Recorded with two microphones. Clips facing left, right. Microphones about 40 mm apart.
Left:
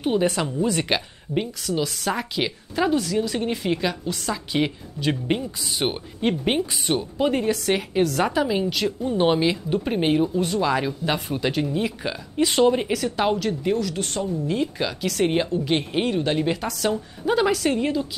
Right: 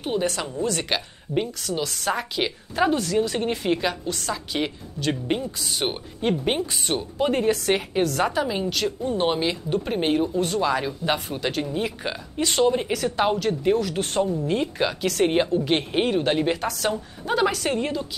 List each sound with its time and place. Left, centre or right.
0.0 s speech: centre
4.1 s speech: centre
12.4 s speech: centre
13.0 s speech: centre